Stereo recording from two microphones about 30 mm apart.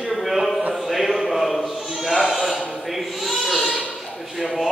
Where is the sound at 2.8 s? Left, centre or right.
Centre.